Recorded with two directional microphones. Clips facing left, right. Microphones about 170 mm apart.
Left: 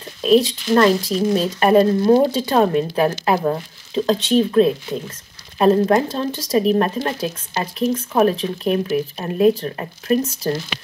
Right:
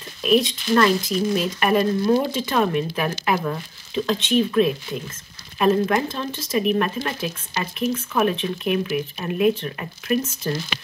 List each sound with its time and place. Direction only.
0.2 s speech: 30° left (ahead or behind)